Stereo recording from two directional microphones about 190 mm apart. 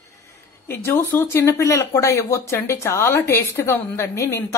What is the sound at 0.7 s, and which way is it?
Speech, 10° left (ahead or behind).